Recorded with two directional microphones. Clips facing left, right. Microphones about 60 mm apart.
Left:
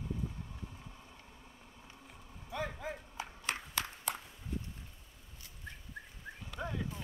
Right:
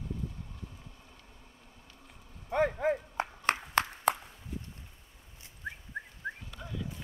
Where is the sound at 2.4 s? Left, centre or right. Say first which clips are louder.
Right 12 dB; right.